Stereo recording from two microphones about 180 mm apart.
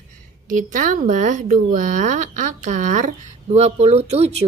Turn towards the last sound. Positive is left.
turn(degrees=-35)  # may be behind; listen again after turning